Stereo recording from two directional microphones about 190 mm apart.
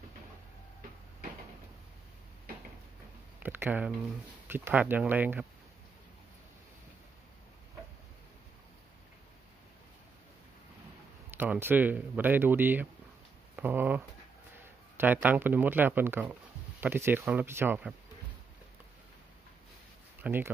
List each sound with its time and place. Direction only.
3.3 s speech: 10° right (ahead or behind)
11.2 s speech: 10° right (ahead or behind)
20.2 s speech: 10° right (ahead or behind)